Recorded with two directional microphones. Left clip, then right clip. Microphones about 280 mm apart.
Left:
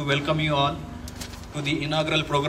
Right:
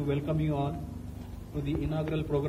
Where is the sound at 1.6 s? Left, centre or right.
Centre.